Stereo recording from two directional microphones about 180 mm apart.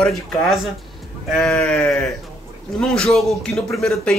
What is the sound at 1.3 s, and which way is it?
A man's voice, 5° left (ahead or behind).